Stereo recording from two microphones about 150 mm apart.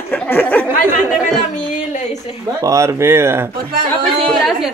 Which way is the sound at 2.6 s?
20° right (ahead or behind).